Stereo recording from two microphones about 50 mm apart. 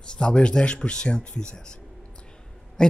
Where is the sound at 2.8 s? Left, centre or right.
Centre.